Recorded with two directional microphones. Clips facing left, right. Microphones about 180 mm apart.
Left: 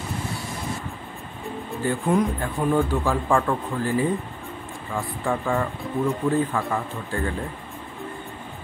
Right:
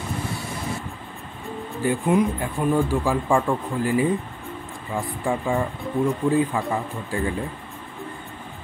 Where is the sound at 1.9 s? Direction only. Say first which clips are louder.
Right 2 dB; 5° right (ahead or behind).